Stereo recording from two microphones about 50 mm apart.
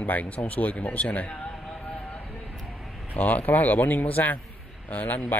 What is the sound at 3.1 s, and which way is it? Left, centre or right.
Speech, left.